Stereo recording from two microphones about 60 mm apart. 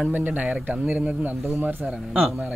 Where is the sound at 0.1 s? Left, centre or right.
Right.